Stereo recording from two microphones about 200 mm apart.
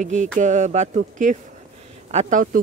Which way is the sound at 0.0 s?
35° right (ahead or behind).